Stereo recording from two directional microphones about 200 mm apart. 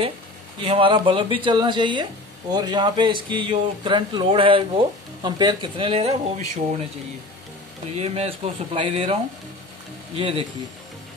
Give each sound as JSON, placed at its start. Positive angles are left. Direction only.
{"t": 0.6, "sound": "speech", "side_deg": -25}
{"t": 8.0, "sound": "speech", "side_deg": -30}